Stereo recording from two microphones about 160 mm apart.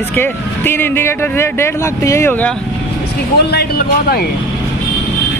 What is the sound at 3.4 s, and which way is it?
Speech, 85° left.